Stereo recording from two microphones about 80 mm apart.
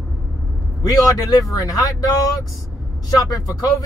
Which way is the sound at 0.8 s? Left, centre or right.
Left.